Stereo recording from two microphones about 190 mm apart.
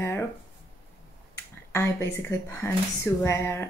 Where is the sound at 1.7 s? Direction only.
15° left (ahead or behind).